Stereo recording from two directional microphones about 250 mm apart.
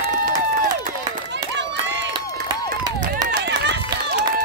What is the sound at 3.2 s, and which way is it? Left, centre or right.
Run, right.